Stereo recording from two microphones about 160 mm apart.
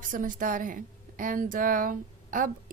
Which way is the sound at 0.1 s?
55° right (ahead or behind).